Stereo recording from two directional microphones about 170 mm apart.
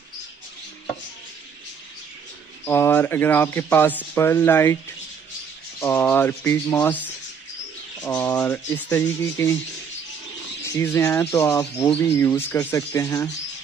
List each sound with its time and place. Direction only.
2.6 s speech: 15° left (ahead or behind)
5.8 s speech: 10° left (ahead or behind)
8.0 s speech: 5° left (ahead or behind)
10.6 s speech: 15° left (ahead or behind)